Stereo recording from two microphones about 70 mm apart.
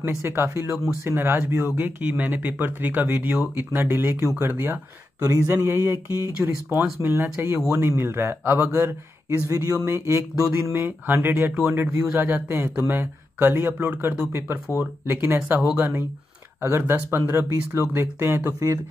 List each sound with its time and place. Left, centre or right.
0.1 s speech: right
1.8 s speech: right
5.2 s speech: right